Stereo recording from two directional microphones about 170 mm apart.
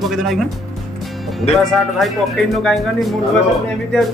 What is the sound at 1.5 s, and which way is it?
Speech, centre (ahead or behind).